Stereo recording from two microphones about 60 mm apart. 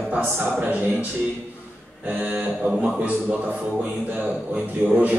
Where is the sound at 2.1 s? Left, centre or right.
Right.